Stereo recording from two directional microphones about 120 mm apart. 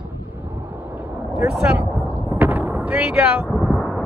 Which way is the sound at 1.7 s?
15° right (ahead or behind).